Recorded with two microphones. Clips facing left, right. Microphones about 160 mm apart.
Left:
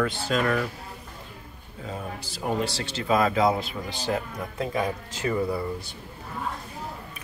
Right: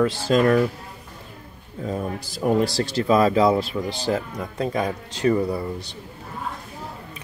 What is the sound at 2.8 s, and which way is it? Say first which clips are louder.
Speech: right 3 dB; 40° right (ahead or behind).